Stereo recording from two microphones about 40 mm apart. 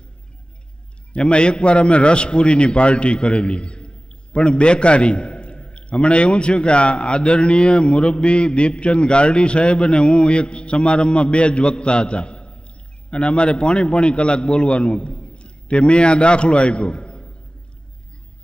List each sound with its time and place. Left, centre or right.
1.1 s a man's voice: left